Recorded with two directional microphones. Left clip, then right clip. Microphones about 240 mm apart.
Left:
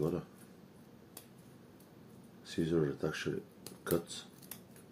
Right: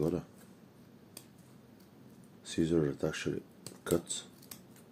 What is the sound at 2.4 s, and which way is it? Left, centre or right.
Speech, right.